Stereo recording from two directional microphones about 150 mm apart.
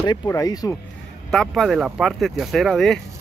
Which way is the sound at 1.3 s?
Centre (ahead or behind).